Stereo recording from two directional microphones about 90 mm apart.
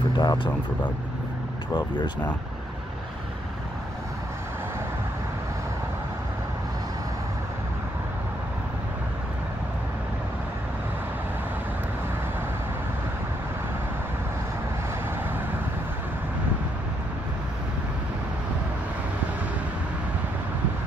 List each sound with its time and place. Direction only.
0.2 s speech: 50° left (ahead or behind)